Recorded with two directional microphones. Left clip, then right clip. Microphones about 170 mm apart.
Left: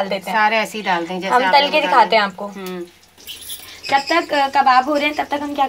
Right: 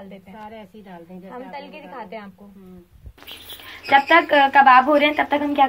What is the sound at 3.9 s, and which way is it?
Speech, 20° left (ahead or behind).